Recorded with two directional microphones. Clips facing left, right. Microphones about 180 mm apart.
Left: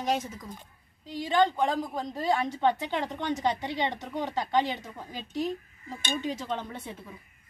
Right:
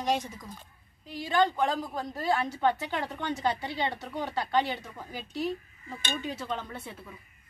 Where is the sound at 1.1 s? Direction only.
20° left (ahead or behind).